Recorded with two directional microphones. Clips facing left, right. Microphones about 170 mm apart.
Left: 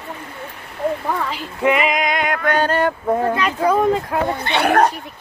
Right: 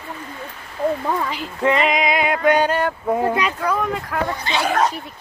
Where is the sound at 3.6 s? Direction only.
25° left (ahead or behind).